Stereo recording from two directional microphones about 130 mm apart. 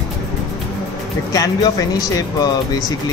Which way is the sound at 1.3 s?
30° left (ahead or behind).